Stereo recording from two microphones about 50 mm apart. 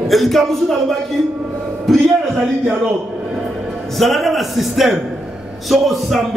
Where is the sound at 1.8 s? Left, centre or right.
Centre.